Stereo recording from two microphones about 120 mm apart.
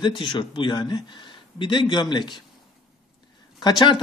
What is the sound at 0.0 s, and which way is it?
A man's voice, 40° left (ahead or behind).